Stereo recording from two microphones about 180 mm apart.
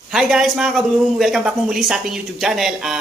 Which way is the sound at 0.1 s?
5° right (ahead or behind).